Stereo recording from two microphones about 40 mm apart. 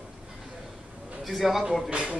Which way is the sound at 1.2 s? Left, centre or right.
Centre.